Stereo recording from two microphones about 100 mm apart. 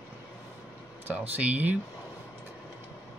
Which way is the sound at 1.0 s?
15° right (ahead or behind).